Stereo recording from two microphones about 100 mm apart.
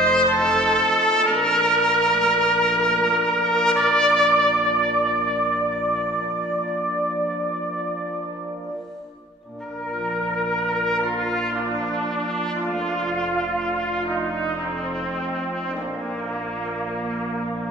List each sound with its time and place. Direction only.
0.0 s music: 10° left (ahead or behind)
10.5 s music: 5° left (ahead or behind)